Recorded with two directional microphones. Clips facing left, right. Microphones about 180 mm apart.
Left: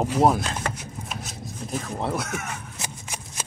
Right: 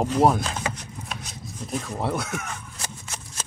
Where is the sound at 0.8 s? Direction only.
Centre (ahead or behind).